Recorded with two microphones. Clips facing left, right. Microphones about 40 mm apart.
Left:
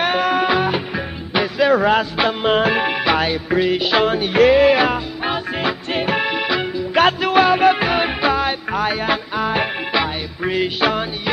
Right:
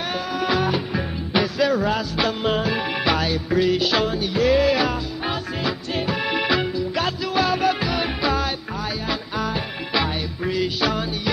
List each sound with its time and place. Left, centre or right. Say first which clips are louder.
0.0 s music: left 8 dB; left
0.5 s music: left 3 dB; left
1.7 s music: left 6 dB; left
4.0 s music: left 7 dB; left
4.5 s music: left 3 dB; left
6.2 s music: left 1 dB; centre
7.0 s music: left 10 dB; left
8.7 s music: left 7 dB; left
10.4 s music: left 5 dB; left